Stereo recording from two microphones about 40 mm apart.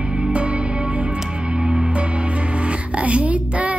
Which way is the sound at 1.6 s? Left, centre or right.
Centre.